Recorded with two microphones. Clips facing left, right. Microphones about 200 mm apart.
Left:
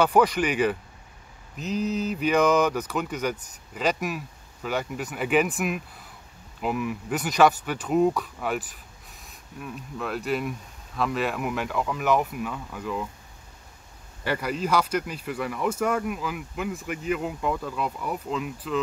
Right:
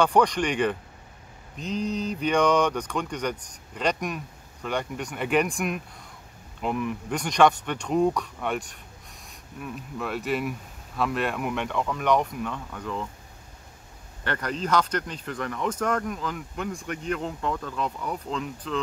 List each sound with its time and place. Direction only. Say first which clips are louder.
0.0 s speech: left 1 dB; 5° left (ahead or behind)
14.2 s speech: left 2 dB; 10° left (ahead or behind)